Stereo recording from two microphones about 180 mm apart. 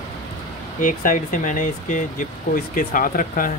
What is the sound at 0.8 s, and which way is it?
Speech, 50° left (ahead or behind).